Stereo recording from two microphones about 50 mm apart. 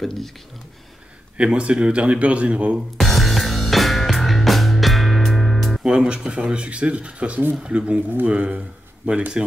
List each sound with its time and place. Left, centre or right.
0.0 s speech: centre
1.4 s speech: right
3.0 s music: centre
5.9 s speech: centre